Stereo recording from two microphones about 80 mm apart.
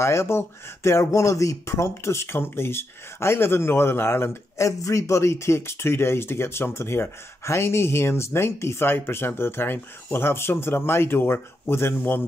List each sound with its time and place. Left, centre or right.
0.0 s speech: left